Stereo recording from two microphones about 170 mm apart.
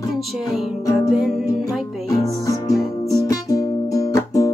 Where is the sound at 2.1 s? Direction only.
20° left (ahead or behind).